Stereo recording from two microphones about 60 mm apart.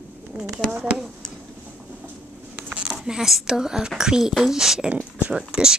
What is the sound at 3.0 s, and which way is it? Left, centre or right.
A woman's voice, centre.